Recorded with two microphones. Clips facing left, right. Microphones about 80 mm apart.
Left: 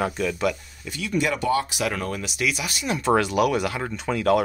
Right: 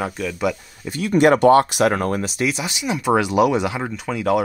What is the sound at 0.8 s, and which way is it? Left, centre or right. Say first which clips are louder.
Speech: right 7 dB; right.